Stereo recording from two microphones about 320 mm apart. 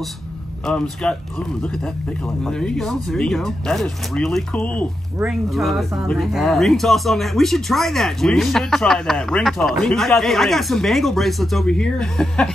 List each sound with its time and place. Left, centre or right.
0.7 s speech: centre
2.4 s speech: centre